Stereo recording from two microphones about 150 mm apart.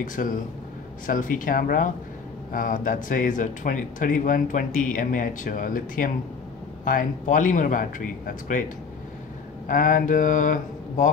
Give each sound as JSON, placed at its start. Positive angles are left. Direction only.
{"t": 0.0, "sound": "speech", "side_deg": 60}
{"t": 9.7, "sound": "speech", "side_deg": 60}